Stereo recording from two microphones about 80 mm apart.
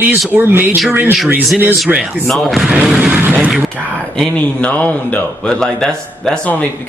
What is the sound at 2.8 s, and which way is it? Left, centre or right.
Vehicle, centre.